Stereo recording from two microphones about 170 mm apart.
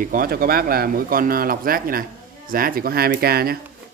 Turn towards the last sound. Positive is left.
turn(degrees=-65)  # may be behind; listen again after turning